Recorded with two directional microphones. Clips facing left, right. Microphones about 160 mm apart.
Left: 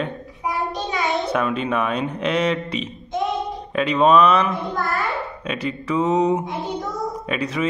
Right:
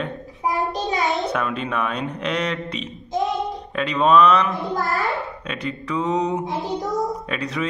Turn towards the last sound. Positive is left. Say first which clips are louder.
# left 3 dB
turn(degrees=5)  # may be behind; listen again after turning